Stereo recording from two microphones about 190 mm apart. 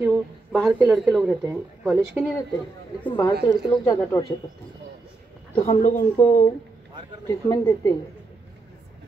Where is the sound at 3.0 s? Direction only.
15° left (ahead or behind).